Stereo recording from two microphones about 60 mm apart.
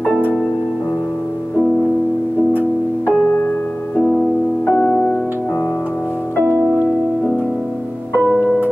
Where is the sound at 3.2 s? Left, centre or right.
Left.